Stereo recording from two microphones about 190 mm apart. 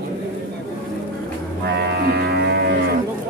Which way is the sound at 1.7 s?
60° right (ahead or behind).